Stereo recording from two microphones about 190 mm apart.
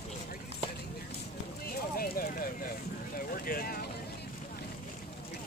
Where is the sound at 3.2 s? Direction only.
50° left (ahead or behind).